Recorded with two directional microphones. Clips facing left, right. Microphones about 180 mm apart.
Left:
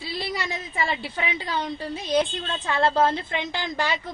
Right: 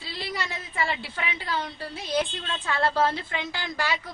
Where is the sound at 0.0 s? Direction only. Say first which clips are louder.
Left 3 dB; 15° left (ahead or behind).